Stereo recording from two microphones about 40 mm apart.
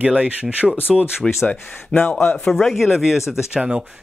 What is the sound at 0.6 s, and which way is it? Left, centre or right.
Speech, centre.